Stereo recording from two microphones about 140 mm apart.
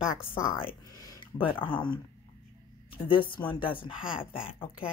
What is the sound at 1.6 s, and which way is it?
Speech, 35° left (ahead or behind).